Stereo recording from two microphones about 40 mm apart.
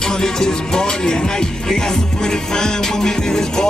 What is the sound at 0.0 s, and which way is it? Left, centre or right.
Music, centre.